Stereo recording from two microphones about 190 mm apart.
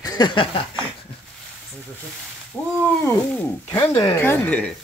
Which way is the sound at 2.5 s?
10° left (ahead or behind).